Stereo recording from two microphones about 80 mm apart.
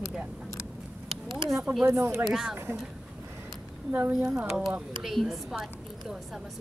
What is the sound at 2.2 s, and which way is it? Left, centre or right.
Speech, centre.